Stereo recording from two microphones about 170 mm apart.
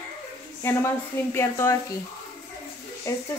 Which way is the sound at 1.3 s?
15° left (ahead or behind).